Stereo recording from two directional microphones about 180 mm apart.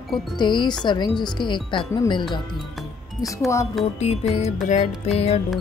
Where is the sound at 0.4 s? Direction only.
25° left (ahead or behind).